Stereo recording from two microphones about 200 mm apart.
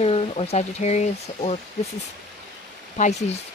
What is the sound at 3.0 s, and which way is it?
Speech, 35° left (ahead or behind).